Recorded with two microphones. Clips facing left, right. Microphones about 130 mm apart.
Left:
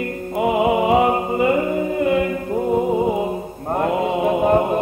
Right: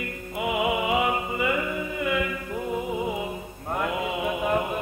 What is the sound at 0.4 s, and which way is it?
Music, 40° left (ahead or behind).